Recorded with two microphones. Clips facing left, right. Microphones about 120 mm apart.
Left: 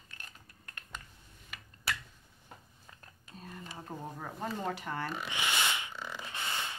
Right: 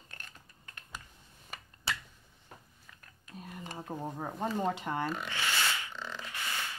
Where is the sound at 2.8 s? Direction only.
30° left (ahead or behind).